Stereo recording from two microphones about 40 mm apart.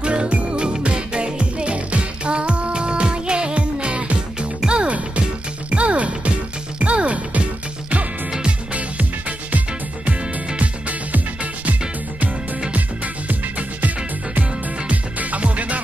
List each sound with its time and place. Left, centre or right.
0.0 s music: right
8.3 s music: right
10.6 s music: right
12.7 s music: right